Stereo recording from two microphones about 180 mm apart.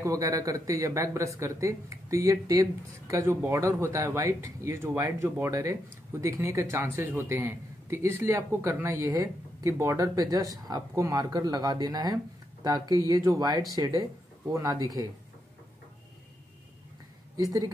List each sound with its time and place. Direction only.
0.0 s a man's voice: 20° right (ahead or behind)
17.4 s speech: 20° right (ahead or behind)